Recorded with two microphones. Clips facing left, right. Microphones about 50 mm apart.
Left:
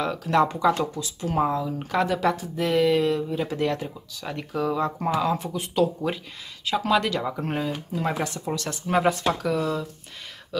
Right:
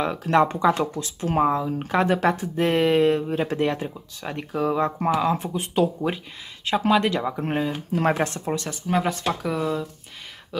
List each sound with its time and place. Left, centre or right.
0.0 s speech: right
0.7 s speech: right
1.4 s speech: right
3.5 s speech: right
5.1 s speech: centre
6.6 s speech: right
6.9 s speech: right
7.9 s speech: right
8.6 s speech: centre
9.4 s speech: centre